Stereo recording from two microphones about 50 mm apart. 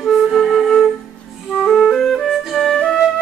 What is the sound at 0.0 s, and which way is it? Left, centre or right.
Flute, centre.